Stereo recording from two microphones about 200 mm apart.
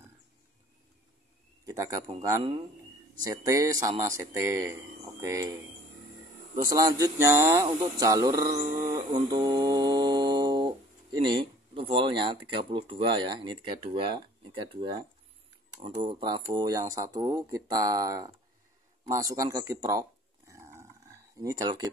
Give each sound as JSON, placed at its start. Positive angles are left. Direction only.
{"t": 1.7, "sound": "speech", "side_deg": -15}
{"t": 3.2, "sound": "speech", "side_deg": -15}
{"t": 19.0, "sound": "dog", "side_deg": -15}